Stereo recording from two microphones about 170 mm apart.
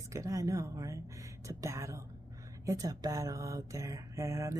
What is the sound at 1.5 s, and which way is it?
Speech, 20° right (ahead or behind).